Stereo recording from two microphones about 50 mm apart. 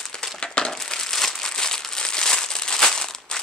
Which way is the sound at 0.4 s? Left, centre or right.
Centre.